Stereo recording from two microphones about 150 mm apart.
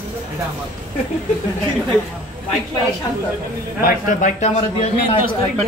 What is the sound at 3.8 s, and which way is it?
A man's voice, 60° left (ahead or behind).